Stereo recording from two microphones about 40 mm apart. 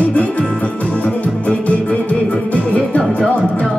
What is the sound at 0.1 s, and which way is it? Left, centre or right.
Music, left.